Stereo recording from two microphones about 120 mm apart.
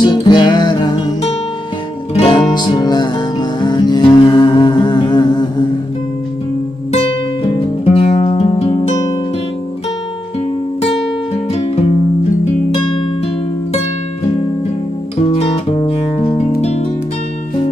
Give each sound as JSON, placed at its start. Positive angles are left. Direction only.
{"t": 0.0, "sound": "music", "side_deg": 40}
{"t": 2.1, "sound": "music", "side_deg": 50}
{"t": 2.5, "sound": "music", "side_deg": 40}
{"t": 6.9, "sound": "music", "side_deg": 55}
{"t": 11.5, "sound": "music", "side_deg": 60}
{"t": 15.2, "sound": "music", "side_deg": 55}
{"t": 16.3, "sound": "music", "side_deg": 60}